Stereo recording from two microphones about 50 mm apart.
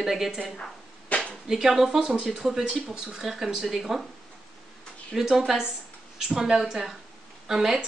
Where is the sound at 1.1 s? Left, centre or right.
Left.